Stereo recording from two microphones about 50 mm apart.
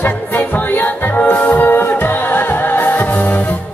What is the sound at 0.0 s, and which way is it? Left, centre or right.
Music, left.